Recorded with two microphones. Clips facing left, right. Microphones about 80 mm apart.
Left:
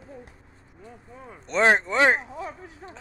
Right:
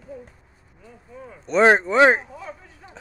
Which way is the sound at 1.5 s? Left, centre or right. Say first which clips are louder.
Right 5 dB; centre.